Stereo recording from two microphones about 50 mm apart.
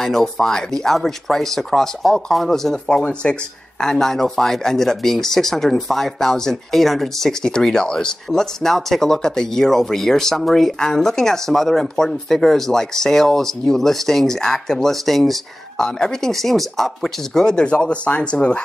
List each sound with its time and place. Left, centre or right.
0.0 s speech: centre
3.8 s speech: centre
17.6 s speech: left